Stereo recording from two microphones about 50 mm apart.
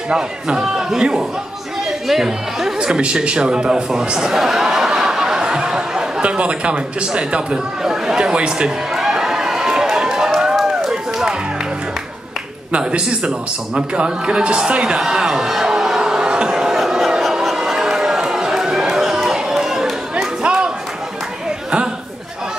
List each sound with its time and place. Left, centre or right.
0.1 s a man's voice: centre
2.8 s a man's voice: centre
8.9 s run: centre
12.7 s a man's voice: right
15.0 s music: centre
17.2 s a sound: centre
20.4 s a sound: centre